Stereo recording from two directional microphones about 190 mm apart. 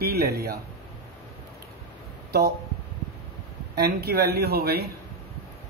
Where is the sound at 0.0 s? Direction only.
55° right (ahead or behind).